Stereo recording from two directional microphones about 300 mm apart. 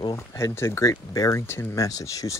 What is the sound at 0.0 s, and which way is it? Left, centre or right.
Speech, centre.